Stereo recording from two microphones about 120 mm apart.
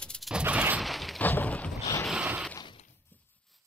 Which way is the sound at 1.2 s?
15° left (ahead or behind).